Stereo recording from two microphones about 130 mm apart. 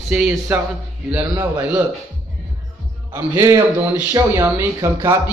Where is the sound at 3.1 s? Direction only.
20° right (ahead or behind).